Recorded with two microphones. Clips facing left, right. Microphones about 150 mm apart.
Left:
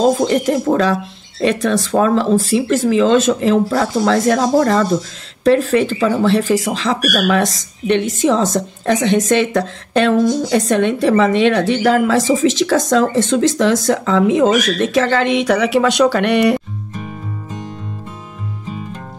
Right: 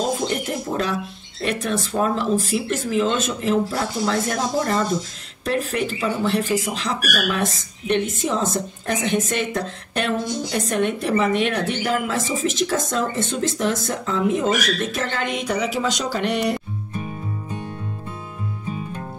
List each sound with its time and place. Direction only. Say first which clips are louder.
0.0 s speech: left 10 dB; 90° left; by 16.5 s 65° left (ahead or behind)